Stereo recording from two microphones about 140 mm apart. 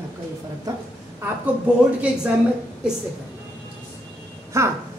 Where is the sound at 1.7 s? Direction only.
10° right (ahead or behind).